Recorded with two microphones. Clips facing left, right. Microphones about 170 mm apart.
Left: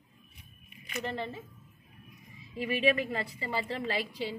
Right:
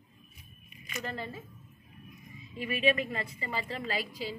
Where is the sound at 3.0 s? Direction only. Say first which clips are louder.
Left 2 dB; 30° left (ahead or behind).